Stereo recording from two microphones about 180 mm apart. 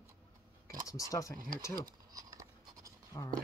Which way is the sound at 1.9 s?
20° right (ahead or behind).